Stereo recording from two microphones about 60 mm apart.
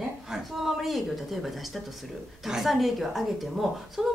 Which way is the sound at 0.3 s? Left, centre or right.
Centre.